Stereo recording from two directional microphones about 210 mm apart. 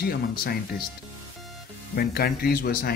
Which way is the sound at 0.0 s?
45° left (ahead or behind).